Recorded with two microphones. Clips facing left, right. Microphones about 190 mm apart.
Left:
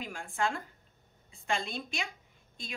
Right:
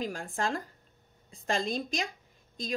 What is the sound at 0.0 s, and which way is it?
Speech, 40° right (ahead or behind).